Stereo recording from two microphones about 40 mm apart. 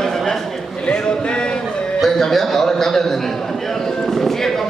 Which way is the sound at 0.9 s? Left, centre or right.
Left.